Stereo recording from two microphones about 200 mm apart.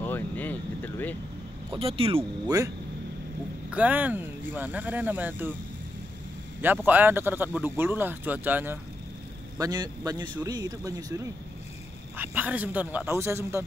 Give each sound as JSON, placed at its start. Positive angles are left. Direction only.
{"t": 0.0, "sound": "vehicle", "side_deg": 10}
{"t": 1.7, "sound": "speech", "side_deg": -30}
{"t": 3.7, "sound": "speech", "side_deg": -5}
{"t": 6.6, "sound": "speech", "side_deg": -10}
{"t": 12.2, "sound": "speech", "side_deg": -10}